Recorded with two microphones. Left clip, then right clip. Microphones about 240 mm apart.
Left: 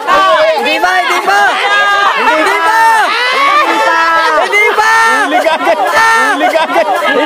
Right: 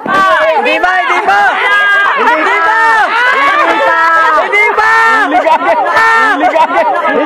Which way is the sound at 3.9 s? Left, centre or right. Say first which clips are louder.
Right 1 dB; centre.